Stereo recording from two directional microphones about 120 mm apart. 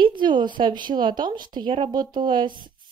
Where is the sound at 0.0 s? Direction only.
40° right (ahead or behind).